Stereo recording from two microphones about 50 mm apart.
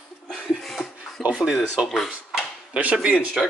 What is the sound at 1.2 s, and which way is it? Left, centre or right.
Speech, right.